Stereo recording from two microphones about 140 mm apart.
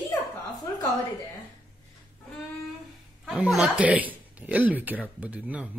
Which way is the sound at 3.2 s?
5° right (ahead or behind).